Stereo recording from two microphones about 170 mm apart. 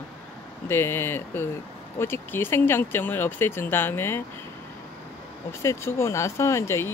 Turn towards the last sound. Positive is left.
turn(degrees=15)  # may be behind; listen again after turning